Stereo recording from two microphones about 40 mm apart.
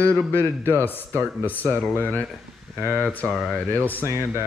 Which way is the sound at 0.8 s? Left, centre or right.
Left.